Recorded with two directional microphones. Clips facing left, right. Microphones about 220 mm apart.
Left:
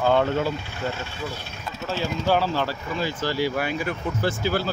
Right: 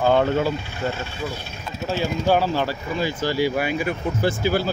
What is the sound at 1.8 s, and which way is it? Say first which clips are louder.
Speech: right 3 dB; 10° right (ahead or behind).